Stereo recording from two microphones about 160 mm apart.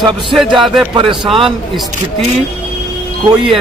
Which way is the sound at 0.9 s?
30° right (ahead or behind).